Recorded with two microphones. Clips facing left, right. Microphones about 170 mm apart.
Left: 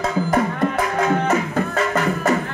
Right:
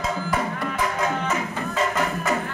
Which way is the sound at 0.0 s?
55° left (ahead or behind).